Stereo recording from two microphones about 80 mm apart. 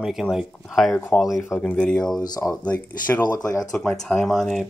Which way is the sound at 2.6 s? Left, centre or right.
Centre.